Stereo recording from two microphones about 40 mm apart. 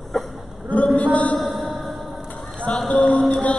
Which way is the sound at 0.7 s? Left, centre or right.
Left.